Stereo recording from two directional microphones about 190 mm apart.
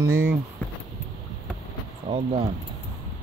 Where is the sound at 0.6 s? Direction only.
5° left (ahead or behind).